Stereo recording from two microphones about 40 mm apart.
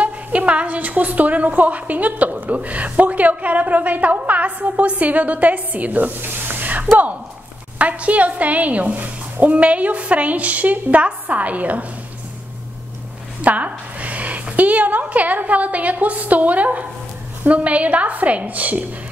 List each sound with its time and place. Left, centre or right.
0.0 s a woman's voice: right
6.8 s a woman's voice: right
13.4 s a woman's voice: right